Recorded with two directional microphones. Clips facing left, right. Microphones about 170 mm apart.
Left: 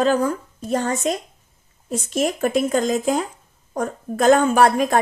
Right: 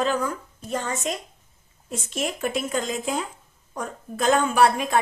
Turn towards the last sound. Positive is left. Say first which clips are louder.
# left 4 dB
turn(degrees=45)  # may be behind; listen again after turning